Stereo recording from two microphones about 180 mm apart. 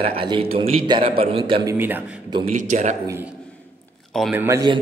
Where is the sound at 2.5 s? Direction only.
40° right (ahead or behind).